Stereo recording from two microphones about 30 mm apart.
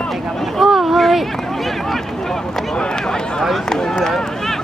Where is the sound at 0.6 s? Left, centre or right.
Centre.